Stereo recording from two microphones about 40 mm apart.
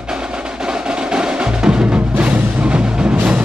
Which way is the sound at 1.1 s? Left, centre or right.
Centre.